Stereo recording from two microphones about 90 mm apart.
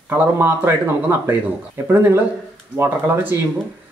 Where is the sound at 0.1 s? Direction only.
30° right (ahead or behind).